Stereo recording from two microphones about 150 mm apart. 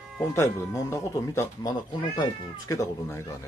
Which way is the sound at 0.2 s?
20° left (ahead or behind).